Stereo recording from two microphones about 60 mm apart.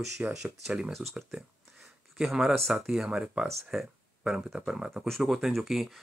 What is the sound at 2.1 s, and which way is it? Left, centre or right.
Speech, centre.